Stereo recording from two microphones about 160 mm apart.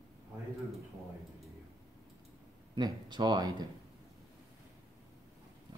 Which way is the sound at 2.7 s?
25° right (ahead or behind).